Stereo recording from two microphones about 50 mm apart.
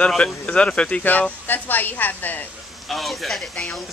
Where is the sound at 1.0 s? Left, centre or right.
Left.